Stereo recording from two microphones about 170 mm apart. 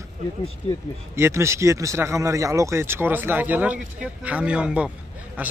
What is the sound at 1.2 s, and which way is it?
Speech, 15° right (ahead or behind).